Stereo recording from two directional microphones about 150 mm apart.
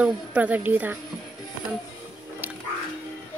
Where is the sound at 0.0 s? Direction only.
10° right (ahead or behind).